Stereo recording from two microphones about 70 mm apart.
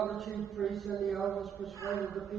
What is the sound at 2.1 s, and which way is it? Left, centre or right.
Speech, centre.